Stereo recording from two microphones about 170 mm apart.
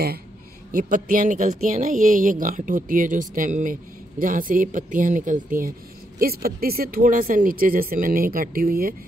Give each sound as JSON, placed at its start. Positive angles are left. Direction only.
{"t": 0.7, "sound": "speech", "side_deg": -50}